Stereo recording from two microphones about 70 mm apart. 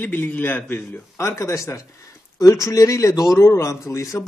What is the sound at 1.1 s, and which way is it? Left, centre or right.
A man's voice, left.